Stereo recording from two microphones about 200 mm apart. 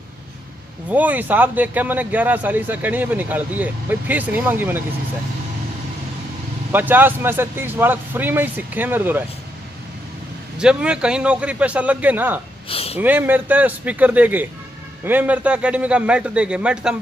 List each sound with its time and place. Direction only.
0.8 s speech: 10° right (ahead or behind)
6.7 s speech: 10° right (ahead or behind)
10.6 s a man's voice: 5° right (ahead or behind)
12.6 s a sound: 30° left (ahead or behind)
13.0 s a man's voice: 10° right (ahead or behind)